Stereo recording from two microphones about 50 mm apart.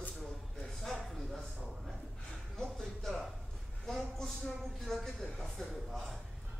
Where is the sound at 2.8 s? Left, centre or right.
Centre.